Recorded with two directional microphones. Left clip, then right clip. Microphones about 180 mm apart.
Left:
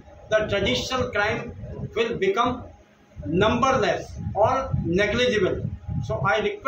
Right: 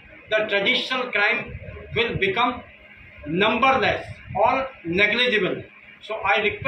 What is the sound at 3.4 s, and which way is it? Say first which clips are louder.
A man's voice: right 2 dB; 10° left (ahead or behind).